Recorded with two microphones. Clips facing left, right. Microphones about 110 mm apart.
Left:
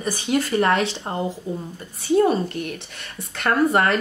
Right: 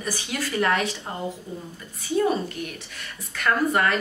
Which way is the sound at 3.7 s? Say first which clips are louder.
Left 3 dB; 30° left (ahead or behind).